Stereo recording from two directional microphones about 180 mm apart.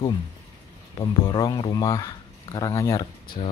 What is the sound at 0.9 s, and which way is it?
Speech, 30° left (ahead or behind).